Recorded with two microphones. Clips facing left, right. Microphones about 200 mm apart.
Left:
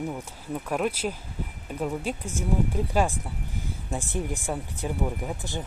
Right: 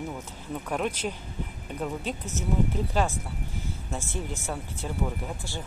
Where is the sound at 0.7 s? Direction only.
5° left (ahead or behind).